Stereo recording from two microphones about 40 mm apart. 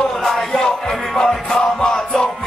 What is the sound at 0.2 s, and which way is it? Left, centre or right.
Music, centre.